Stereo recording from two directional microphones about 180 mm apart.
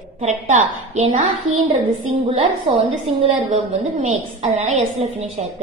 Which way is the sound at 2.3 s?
30° right (ahead or behind).